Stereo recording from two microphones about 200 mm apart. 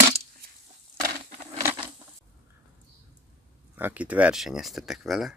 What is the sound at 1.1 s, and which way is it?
Insect, 30° right (ahead or behind).